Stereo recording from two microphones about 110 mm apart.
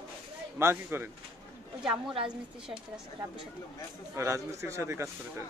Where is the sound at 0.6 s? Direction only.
20° right (ahead or behind).